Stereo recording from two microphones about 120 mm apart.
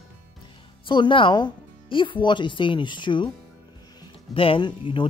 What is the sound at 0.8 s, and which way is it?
Speech, 40° left (ahead or behind).